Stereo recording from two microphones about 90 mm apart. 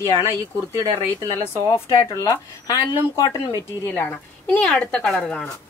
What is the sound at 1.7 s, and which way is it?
Speech, 90° left.